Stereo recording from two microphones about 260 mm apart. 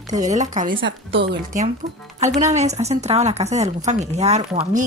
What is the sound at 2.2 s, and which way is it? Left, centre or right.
Speech, right.